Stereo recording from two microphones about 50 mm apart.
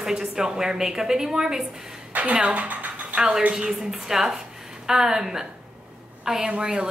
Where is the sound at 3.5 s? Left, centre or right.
Centre.